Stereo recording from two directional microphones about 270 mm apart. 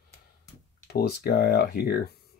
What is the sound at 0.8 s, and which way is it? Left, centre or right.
Speech, left.